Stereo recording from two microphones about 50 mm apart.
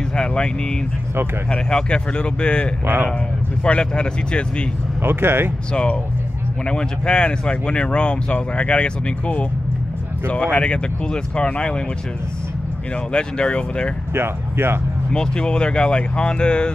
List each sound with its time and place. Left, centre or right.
0.1 s vehicle: centre
1.5 s speech: centre
5.0 s speech: right
5.7 s speech: left
13.1 s speech: left
14.1 s speech: right
15.1 s speech: centre